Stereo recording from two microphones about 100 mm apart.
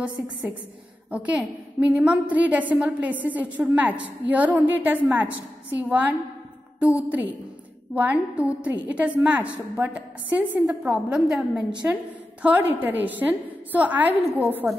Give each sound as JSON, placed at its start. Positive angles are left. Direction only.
{"t": 1.1, "sound": "a woman's voice", "side_deg": -15}